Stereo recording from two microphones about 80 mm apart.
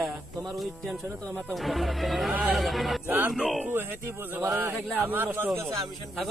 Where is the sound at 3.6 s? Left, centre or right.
Right.